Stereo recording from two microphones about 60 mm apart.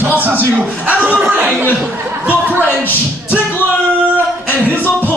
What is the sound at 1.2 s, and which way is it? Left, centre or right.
Speech, centre.